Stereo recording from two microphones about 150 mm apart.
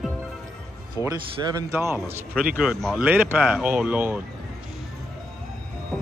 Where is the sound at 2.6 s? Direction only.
Centre (ahead or behind).